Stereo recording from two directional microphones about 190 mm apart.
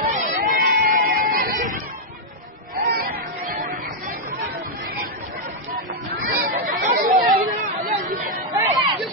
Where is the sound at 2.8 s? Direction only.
50° right (ahead or behind).